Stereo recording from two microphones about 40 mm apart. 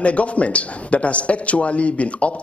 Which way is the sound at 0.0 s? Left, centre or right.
Left.